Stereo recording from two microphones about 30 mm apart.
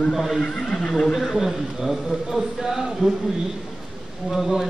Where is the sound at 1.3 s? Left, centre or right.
Centre.